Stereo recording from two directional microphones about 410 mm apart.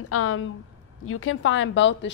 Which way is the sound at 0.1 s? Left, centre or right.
Left.